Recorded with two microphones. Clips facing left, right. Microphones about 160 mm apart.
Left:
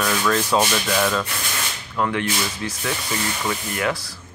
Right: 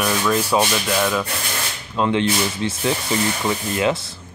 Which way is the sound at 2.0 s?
20° right (ahead or behind).